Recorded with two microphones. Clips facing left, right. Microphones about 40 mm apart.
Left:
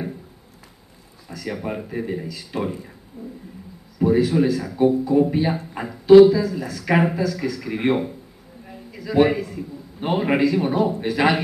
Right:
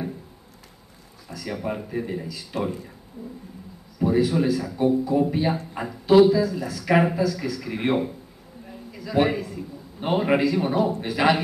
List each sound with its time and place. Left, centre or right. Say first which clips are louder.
1.3 s speech: left 1 dB; centre
3.2 s a sound: left 2 dB; left
4.0 s a man's voice: left 3 dB; centre